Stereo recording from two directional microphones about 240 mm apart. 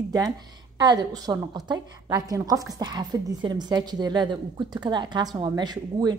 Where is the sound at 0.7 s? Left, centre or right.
Centre.